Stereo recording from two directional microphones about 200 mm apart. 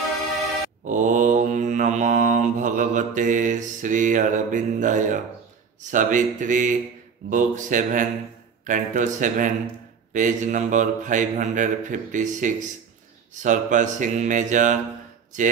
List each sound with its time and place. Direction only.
0.8 s mantra: 40° right (ahead or behind)
5.8 s speech: 40° right (ahead or behind)